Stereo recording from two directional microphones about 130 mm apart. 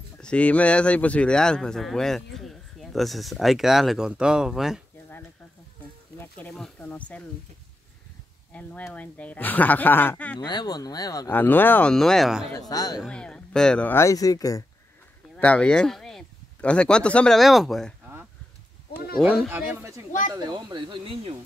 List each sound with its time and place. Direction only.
0.2 s speech: 10° left (ahead or behind)
6.8 s speech: 10° left (ahead or behind)
8.5 s speech: 10° left (ahead or behind)
10.4 s speech: 30° left (ahead or behind)
11.2 s speech: 15° left (ahead or behind)
11.9 s speech: 5° left (ahead or behind)
12.5 s speech: 30° left (ahead or behind)
13.1 s speech: 5° left (ahead or behind)
13.9 s speech: 25° left (ahead or behind)
15.3 s speech: 10° left (ahead or behind)
19.2 s speech: 5° left (ahead or behind)
19.5 s a man's voice: 20° right (ahead or behind)
20.3 s speech: 35° right (ahead or behind)